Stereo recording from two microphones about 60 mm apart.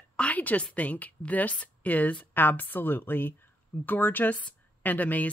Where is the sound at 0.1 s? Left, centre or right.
Left.